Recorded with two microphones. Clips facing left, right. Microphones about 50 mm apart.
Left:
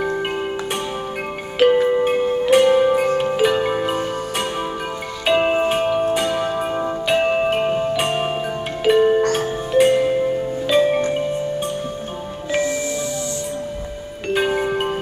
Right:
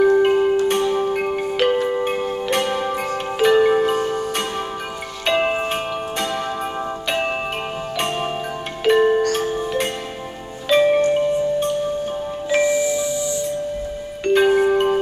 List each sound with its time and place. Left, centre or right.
0.2 s music: centre
12.5 s music: right
14.2 s music: centre